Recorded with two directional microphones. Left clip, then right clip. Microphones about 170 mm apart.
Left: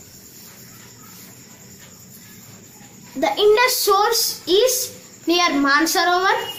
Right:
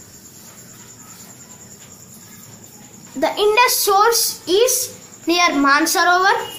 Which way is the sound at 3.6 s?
25° right (ahead or behind).